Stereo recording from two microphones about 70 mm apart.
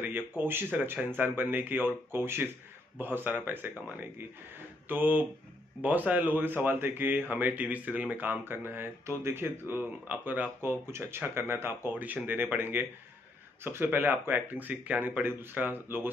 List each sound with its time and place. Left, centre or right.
0.0 s speech: right
9.8 s speech: right
10.6 s speech: right